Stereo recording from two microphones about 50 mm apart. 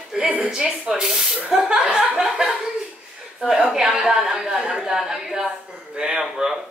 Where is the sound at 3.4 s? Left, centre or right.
Centre.